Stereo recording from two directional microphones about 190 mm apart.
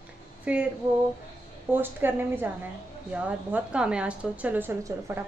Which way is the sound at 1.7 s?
10° right (ahead or behind).